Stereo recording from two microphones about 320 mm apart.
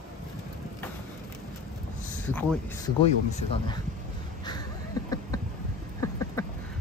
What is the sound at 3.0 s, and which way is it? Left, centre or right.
Speech, centre.